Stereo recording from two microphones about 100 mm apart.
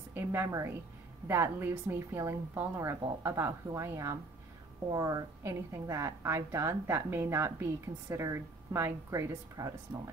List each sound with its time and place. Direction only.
0.1 s a woman's voice: 25° right (ahead or behind)
4.9 s a woman's voice: 35° right (ahead or behind)
9.3 s speech: 35° right (ahead or behind)